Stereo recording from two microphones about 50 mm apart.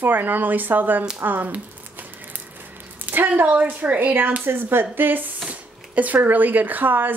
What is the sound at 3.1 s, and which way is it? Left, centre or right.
Speech, right.